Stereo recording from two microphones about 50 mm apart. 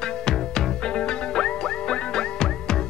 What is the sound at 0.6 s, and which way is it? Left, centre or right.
Music, centre.